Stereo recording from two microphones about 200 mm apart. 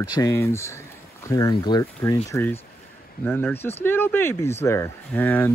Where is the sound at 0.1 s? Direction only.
15° left (ahead or behind).